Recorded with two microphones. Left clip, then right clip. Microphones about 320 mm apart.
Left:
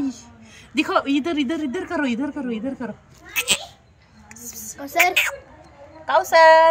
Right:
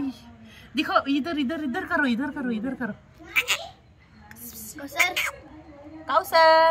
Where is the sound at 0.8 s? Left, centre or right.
Centre.